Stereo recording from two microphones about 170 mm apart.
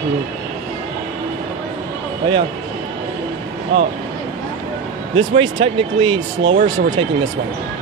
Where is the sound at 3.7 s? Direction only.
40° right (ahead or behind).